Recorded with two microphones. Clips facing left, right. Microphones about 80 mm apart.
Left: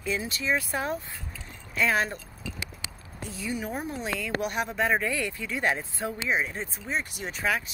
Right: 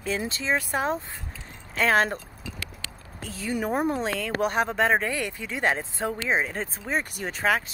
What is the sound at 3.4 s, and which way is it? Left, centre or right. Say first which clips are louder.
Speech: right 7 dB; right.